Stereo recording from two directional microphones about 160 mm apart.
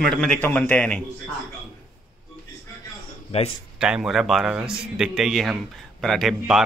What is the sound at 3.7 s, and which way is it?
A man's voice, 5° right (ahead or behind).